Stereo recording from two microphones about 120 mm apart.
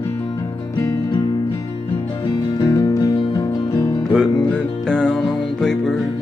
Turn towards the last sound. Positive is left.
turn(degrees=5)  # may be behind; listen again after turning